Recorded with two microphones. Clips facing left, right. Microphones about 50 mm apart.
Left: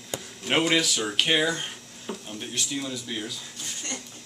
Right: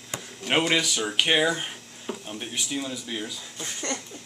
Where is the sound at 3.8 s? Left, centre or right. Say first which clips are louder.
Right 6 dB; right.